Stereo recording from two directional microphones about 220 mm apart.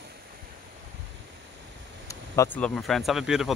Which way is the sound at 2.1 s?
10° left (ahead or behind).